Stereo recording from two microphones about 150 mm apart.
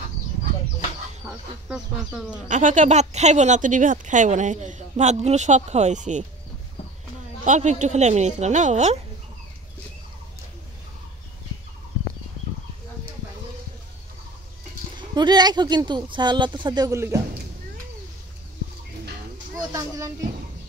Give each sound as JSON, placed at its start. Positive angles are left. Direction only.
{"t": 1.7, "sound": "speech", "side_deg": -5}
{"t": 2.4, "sound": "speech", "side_deg": -55}
{"t": 7.4, "sound": "speech", "side_deg": -55}
{"t": 15.0, "sound": "speech", "side_deg": -30}
{"t": 19.6, "sound": "speech", "side_deg": -20}